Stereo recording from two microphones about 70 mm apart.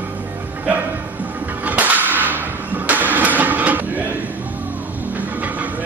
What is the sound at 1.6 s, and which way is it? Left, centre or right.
Whip, right.